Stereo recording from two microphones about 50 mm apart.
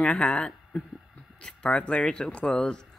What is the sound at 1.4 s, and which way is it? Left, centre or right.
Speech, centre.